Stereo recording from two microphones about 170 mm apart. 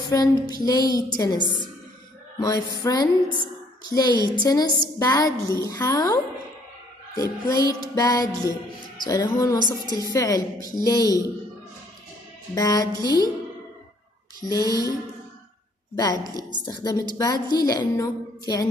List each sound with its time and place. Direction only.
0.1 s a woman's voice: 25° left (ahead or behind)
2.4 s a woman's voice: 20° left (ahead or behind)
4.2 s a woman's voice: 20° left (ahead or behind)
9.8 s a woman's voice: 20° right (ahead or behind)
10.1 s a woman's voice: 20° left (ahead or behind)
12.5 s a woman's voice: 20° left (ahead or behind)
14.4 s a woman's voice: 20° left (ahead or behind)
16.0 s a woman's voice: 25° left (ahead or behind)